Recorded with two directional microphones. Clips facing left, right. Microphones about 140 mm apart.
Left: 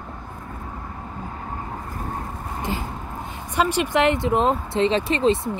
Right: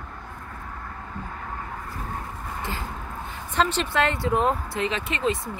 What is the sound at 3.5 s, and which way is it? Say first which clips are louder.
Speech: left 3 dB; 10° left (ahead or behind).